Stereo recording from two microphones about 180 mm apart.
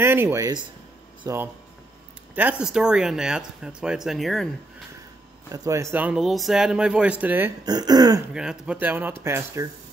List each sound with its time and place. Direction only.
0.0 s speech: 10° right (ahead or behind)
2.6 s speech: 5° right (ahead or behind)
5.5 s speech: 15° right (ahead or behind)
7.6 s speech: 20° right (ahead or behind)
8.3 s speech: 5° right (ahead or behind)